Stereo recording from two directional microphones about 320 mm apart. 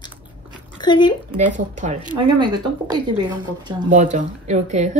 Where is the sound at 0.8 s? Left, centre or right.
Centre.